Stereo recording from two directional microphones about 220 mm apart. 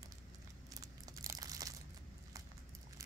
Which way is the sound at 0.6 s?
15° right (ahead or behind).